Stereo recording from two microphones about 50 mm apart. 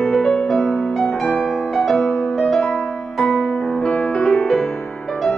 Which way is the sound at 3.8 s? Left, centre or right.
Centre.